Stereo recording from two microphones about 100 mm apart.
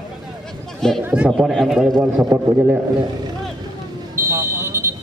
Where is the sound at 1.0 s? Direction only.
15° right (ahead or behind).